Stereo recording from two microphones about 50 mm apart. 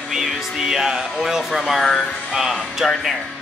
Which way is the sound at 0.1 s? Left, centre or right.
Centre.